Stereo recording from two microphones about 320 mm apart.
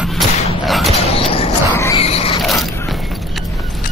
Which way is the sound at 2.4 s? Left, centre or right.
Centre.